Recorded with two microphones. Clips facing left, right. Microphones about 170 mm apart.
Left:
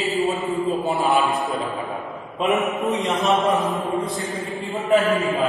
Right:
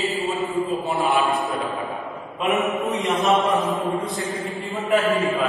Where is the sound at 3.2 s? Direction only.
Centre (ahead or behind).